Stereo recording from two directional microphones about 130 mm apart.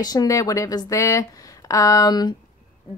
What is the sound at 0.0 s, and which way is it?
Speech, 30° left (ahead or behind).